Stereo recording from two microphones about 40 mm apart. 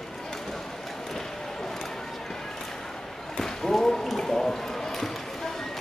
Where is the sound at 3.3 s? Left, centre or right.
Centre.